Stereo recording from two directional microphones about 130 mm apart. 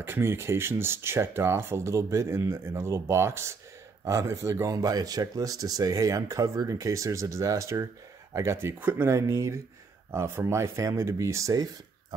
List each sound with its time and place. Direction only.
0.0 s speech: 20° right (ahead or behind)